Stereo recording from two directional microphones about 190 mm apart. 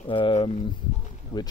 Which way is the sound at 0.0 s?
25° left (ahead or behind).